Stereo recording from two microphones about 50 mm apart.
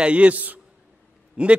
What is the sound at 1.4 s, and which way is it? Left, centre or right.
Speech, centre.